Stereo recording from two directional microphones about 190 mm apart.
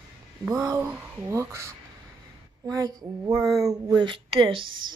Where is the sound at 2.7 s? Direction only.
15° right (ahead or behind).